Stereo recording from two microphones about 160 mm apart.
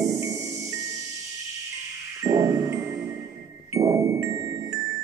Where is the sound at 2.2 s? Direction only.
20° right (ahead or behind).